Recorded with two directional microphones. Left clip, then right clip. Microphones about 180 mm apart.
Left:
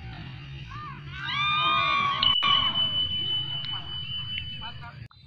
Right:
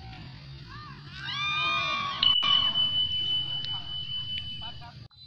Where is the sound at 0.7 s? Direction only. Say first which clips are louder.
Left 5 dB; 30° right (ahead or behind).